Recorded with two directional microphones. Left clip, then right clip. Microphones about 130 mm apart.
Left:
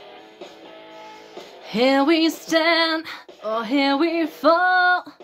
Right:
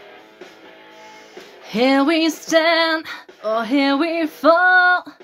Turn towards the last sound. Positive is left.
turn(degrees=-10)  # may be behind; listen again after turning